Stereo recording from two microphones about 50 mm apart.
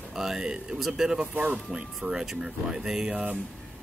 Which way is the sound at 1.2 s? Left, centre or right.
Right.